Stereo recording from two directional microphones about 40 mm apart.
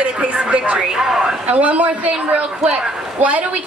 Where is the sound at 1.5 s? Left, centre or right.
Right.